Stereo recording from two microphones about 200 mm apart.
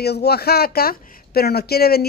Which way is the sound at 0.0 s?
55° left (ahead or behind).